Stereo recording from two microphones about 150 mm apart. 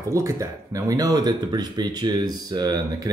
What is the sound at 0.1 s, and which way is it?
Speech, 20° right (ahead or behind).